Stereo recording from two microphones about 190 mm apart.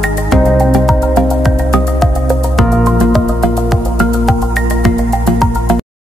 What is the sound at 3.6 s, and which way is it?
Music, centre (ahead or behind).